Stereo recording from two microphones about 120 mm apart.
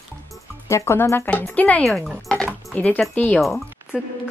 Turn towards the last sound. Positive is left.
turn(degrees=0)  # may be behind; listen again after turning